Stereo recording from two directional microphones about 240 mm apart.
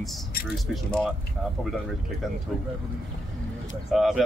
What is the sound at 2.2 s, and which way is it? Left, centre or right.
Speech, centre.